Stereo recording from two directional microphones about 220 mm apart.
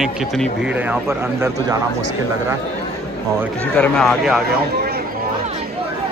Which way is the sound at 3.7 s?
Centre (ahead or behind).